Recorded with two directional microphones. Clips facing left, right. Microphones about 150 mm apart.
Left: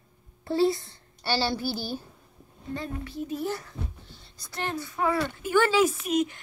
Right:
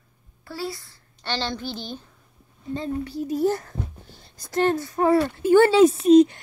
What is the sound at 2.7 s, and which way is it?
Speech, 25° right (ahead or behind).